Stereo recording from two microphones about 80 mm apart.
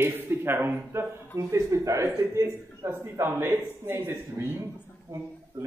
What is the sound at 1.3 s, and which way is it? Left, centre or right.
A man's voice, right.